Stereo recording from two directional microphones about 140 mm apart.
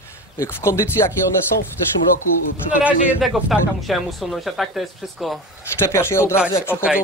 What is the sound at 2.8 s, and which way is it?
Speech, 5° right (ahead or behind).